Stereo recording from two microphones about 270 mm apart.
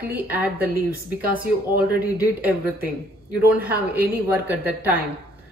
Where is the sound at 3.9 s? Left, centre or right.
Centre.